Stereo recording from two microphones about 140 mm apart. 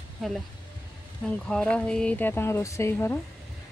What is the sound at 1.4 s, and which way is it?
Speech, 5° left (ahead or behind).